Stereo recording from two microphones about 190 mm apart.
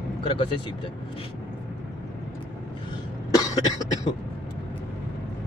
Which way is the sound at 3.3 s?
20° left (ahead or behind).